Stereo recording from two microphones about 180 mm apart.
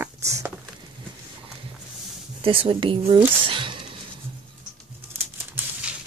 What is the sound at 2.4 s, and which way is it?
Speech, 30° right (ahead or behind).